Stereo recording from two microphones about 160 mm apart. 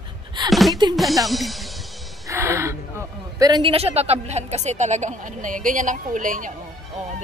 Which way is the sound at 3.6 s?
40° right (ahead or behind).